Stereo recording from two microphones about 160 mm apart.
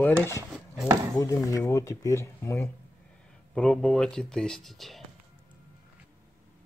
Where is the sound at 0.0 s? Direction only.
15° left (ahead or behind).